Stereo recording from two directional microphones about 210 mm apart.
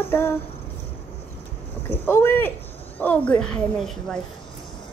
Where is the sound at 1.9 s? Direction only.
10° left (ahead or behind).